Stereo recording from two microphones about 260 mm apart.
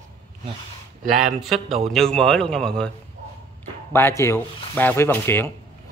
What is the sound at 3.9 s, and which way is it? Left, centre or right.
Speech, centre.